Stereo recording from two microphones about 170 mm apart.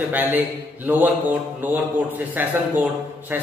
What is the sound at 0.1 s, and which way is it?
A man's voice, 10° right (ahead or behind).